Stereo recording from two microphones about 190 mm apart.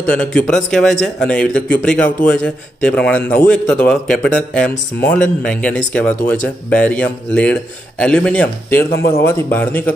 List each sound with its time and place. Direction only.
0.1 s a man's voice: 5° left (ahead or behind)
8.9 s speech: 55° left (ahead or behind)
9.2 s a man's voice: 10° left (ahead or behind)